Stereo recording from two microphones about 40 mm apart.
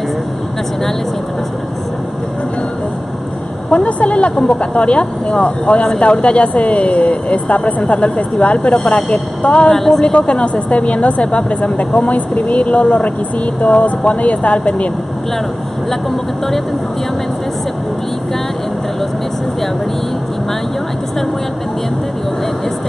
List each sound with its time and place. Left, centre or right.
3.7 s speech: left
4.4 s speech: left
9.8 s a woman's voice: centre
10.1 s speech: left